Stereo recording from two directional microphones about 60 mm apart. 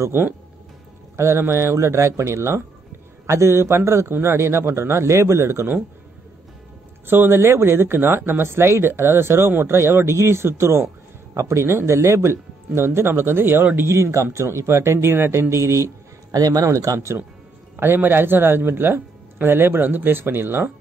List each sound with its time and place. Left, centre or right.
1.1 s speech: right
7.1 s speech: right
15.5 s speech: right
16.3 s speech: right
17.7 s speech: right